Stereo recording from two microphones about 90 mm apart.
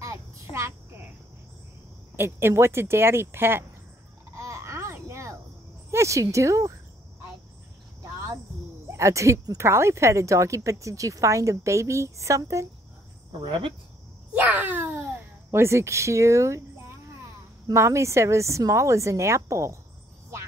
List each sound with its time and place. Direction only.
0.0 s a sound: 35° right (ahead or behind)
2.1 s speech: 25° right (ahead or behind)
4.3 s baby cry: 35° right (ahead or behind)
5.9 s a sound: 35° right (ahead or behind)
6.3 s speech: 35° right (ahead or behind)
8.8 s speech: 30° right (ahead or behind)
13.5 s speech: 70° right (ahead or behind)
14.3 s a sound: 20° right (ahead or behind)
15.5 s speech: 30° right (ahead or behind)
17.6 s speech: 35° right (ahead or behind)